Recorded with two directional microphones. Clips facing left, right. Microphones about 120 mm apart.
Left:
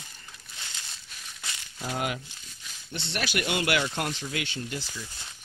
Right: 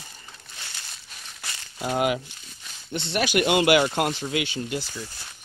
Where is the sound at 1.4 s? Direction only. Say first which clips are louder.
Right 5 dB; 30° right (ahead or behind).